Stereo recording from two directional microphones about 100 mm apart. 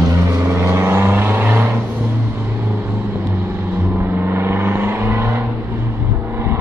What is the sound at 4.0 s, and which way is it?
Vehicle, 20° right (ahead or behind).